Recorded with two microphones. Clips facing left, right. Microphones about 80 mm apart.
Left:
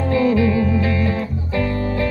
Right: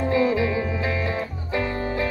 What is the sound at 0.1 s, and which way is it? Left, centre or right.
Music, right.